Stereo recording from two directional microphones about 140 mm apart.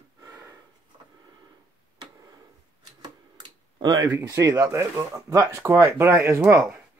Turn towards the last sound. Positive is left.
turn(degrees=-10)  # may be behind; listen again after turning